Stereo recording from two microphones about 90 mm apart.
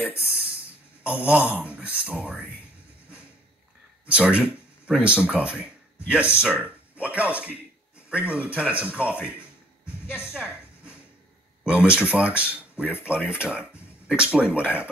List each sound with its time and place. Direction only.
0.2 s a sound: 10° right (ahead or behind)
1.0 s speech: 15° right (ahead or behind)
4.1 s speech: 15° right (ahead or behind)
10.0 s a woman's voice: 25° left (ahead or behind)
10.3 s a sound: 15° right (ahead or behind)
11.6 s speech: 15° right (ahead or behind)